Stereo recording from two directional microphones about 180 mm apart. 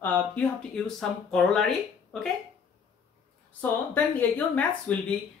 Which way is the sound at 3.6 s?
10° left (ahead or behind).